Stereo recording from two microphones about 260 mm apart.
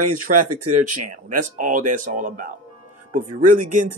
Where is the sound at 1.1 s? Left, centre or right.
Right.